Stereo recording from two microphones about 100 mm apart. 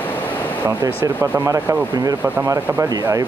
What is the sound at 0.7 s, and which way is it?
Speech, 30° right (ahead or behind).